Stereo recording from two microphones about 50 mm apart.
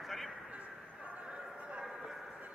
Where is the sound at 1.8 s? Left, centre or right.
Centre.